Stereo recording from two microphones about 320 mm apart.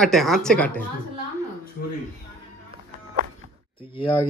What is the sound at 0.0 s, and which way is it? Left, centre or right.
Speech, centre.